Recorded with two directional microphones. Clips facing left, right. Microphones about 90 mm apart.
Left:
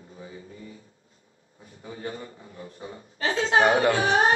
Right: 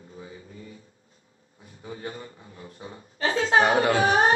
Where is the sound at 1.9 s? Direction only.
30° right (ahead or behind).